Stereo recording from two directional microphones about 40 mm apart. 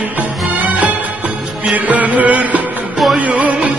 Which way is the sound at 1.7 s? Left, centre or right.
Right.